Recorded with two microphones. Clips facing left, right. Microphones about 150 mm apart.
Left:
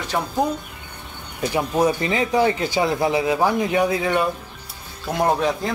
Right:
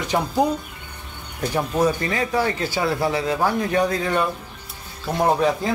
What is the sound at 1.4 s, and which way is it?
Speech, 10° left (ahead or behind).